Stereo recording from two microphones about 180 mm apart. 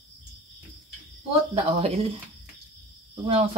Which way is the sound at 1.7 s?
35° right (ahead or behind).